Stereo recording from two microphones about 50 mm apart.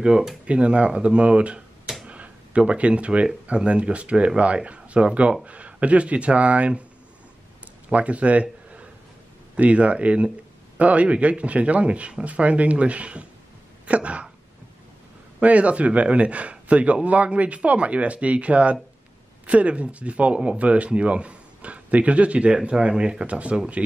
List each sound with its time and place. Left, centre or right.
0.0 s speech: centre
0.5 s speech: right
2.0 s a sound: right
3.4 s speech: right
7.9 s speech: right
15.4 s speech: right